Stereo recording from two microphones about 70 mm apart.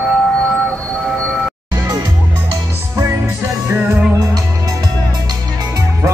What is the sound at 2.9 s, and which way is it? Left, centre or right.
Music, right.